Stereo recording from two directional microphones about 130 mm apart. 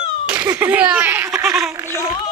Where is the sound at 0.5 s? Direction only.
10° right (ahead or behind).